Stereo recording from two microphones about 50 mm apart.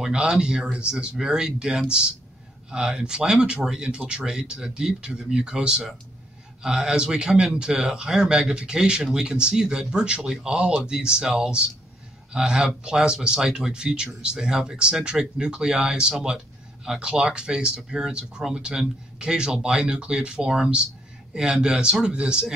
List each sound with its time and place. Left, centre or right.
0.1 s speech: centre